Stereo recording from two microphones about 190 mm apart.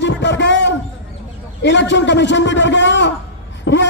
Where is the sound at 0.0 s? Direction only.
70° left (ahead or behind).